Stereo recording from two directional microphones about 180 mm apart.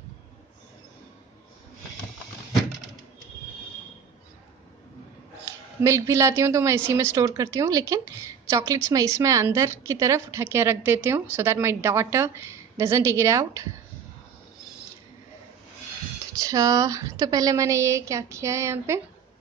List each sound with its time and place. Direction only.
5.8 s a woman's voice: 15° right (ahead or behind)
16.3 s a woman's voice: 20° right (ahead or behind)